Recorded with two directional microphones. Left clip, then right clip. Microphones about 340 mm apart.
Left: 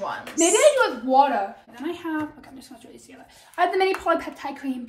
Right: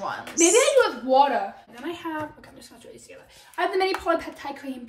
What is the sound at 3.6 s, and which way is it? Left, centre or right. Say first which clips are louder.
A woman's voice: left 3 dB; centre.